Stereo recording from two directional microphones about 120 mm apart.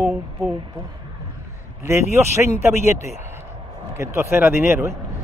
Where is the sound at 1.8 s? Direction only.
20° right (ahead or behind).